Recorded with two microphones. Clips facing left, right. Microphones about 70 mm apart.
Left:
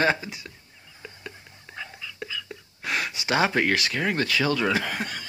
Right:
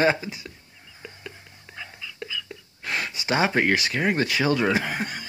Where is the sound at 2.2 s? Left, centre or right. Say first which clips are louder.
Right 1 dB; centre.